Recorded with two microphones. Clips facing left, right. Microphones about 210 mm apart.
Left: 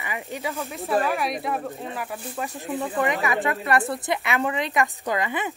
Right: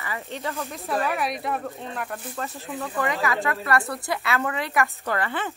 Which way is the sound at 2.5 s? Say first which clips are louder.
Left 4 dB; 15° left (ahead or behind).